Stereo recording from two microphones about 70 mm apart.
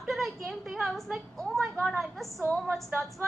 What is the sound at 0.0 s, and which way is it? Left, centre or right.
A woman's voice, centre.